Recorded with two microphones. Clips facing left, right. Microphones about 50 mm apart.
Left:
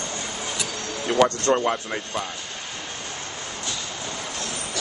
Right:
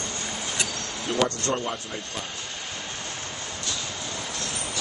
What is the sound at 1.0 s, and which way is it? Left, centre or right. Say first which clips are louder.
Speech: left 6 dB; left.